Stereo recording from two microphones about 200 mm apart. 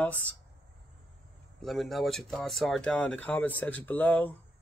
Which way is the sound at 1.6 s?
Centre (ahead or behind).